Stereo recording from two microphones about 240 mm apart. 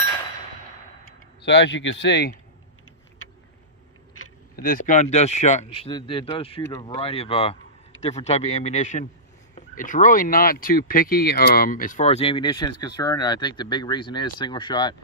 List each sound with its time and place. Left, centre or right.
1.4 s speech: left
4.6 s speech: left; by 15.0 s centre